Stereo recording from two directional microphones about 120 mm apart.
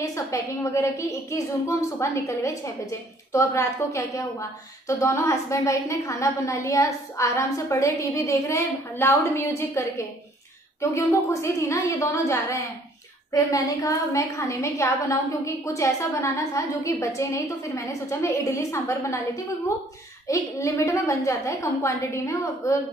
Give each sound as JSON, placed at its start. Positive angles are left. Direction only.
{"t": 0.0, "sound": "a woman's voice", "side_deg": 25}